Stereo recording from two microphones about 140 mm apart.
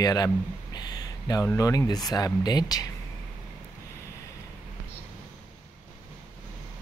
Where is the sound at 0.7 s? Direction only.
30° left (ahead or behind).